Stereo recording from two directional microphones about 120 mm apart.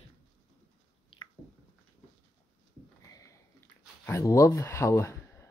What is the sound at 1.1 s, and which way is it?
Squish, 45° left (ahead or behind).